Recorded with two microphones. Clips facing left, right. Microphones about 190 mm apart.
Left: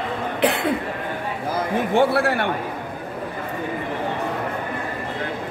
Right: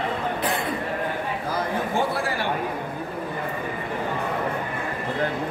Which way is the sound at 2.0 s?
65° left (ahead or behind).